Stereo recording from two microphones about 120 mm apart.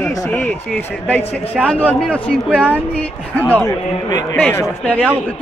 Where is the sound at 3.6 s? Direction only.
30° left (ahead or behind).